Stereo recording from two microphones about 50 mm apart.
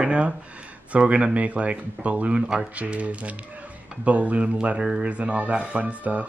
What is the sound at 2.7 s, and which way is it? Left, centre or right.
Speech, right.